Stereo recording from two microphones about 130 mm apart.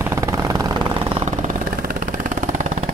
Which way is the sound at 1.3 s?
80° right.